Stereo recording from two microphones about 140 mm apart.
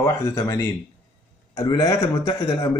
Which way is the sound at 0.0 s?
20° left (ahead or behind).